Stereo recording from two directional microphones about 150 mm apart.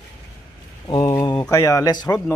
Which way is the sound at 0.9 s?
25° left (ahead or behind).